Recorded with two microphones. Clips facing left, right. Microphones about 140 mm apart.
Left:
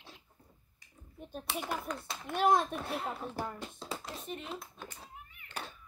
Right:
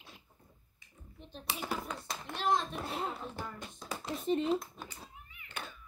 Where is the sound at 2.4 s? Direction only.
50° left (ahead or behind).